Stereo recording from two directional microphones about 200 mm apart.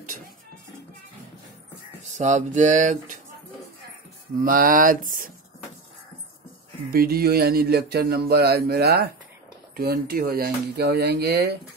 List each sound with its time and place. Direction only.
2.1 s speech: 35° right (ahead or behind)
4.4 s speech: 45° right (ahead or behind)
6.9 s speech: 50° right (ahead or behind)